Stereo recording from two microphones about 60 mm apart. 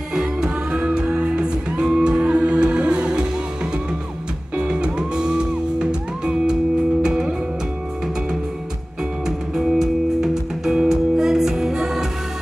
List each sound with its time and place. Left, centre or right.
0.1 s music: centre
4.6 s music: centre
9.6 s music: centre